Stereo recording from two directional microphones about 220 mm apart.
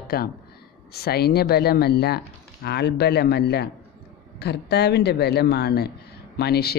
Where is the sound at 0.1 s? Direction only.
45° left (ahead or behind).